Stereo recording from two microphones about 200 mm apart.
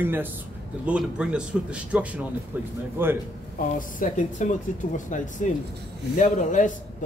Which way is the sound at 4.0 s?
40° left (ahead or behind).